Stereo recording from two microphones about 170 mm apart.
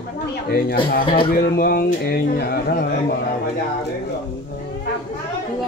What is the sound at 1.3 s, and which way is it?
Speech, 65° left (ahead or behind).